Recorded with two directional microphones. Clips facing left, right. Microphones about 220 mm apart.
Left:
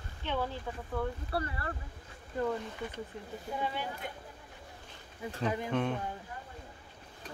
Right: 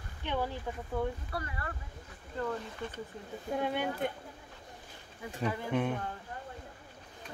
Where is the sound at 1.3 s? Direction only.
35° left (ahead or behind).